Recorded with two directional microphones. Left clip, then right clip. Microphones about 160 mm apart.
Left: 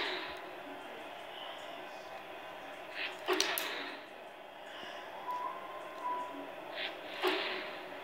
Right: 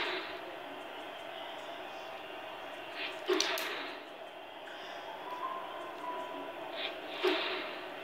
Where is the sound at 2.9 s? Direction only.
60° left (ahead or behind).